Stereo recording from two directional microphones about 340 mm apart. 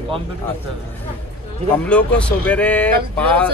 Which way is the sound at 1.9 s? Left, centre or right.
Centre.